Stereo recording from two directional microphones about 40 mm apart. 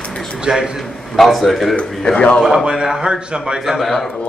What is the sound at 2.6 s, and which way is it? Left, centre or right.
Speech, centre.